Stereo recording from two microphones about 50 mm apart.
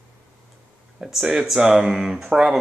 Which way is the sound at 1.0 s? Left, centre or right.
Centre.